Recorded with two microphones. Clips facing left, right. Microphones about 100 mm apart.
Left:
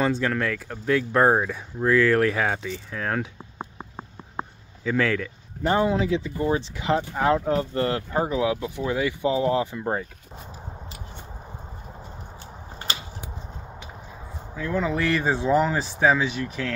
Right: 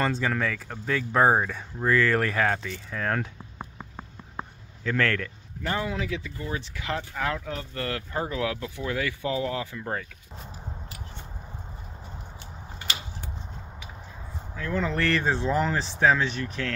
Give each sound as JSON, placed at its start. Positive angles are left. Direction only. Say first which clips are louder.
{"t": 0.0, "sound": "speech", "louder": "left 3 dB", "side_deg": 0}
{"t": 3.5, "sound": "a sound", "louder": "left 4 dB", "side_deg": 25}
{"t": 4.8, "sound": "speech", "louder": "left 3 dB", "side_deg": 5}
{"t": 5.6, "sound": "speech", "louder": "left 8 dB", "side_deg": 25}
{"t": 14.5, "sound": "speech", "louder": "left 3 dB", "side_deg": 10}